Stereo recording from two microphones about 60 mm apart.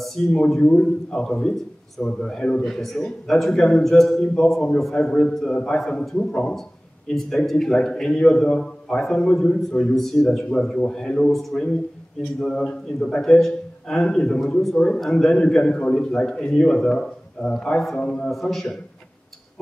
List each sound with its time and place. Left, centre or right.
0.0 s a sound: centre
0.6 s a man's voice: centre
5.0 s a man's voice: left
5.3 s a man's voice: centre